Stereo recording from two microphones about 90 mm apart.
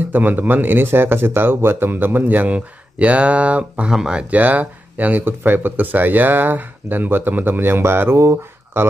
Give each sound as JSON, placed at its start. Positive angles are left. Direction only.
{"t": 0.1, "sound": "a man's voice", "side_deg": -20}